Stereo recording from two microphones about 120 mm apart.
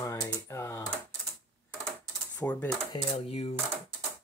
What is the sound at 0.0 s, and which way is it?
Typing, 25° left (ahead or behind).